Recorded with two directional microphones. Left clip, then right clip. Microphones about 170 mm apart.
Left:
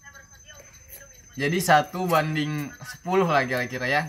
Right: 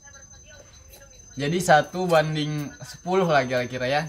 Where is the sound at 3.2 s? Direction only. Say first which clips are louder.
Right 1 dB; 25° right (ahead or behind).